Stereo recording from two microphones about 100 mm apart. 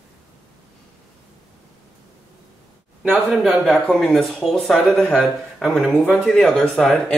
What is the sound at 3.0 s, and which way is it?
Speech, 15° right (ahead or behind).